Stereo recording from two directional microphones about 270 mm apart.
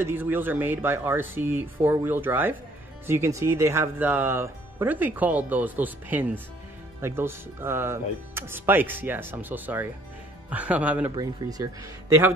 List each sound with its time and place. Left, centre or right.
0.0 s speech: centre